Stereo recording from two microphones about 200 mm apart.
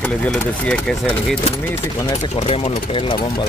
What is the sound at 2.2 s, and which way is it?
Speech, 30° left (ahead or behind).